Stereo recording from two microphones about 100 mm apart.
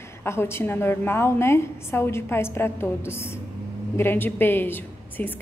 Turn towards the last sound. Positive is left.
turn(degrees=20)  # may be behind; listen again after turning